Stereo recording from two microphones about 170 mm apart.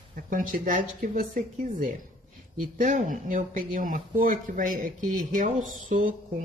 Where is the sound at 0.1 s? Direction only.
50° right (ahead or behind).